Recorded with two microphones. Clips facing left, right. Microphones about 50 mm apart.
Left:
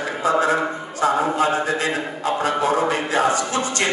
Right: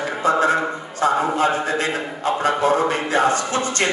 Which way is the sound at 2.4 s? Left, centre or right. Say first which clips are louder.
Right 2 dB; right.